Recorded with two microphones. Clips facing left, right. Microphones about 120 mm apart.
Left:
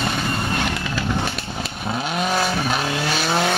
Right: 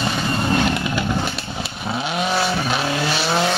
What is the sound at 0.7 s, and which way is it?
Vehicle, 20° right (ahead or behind).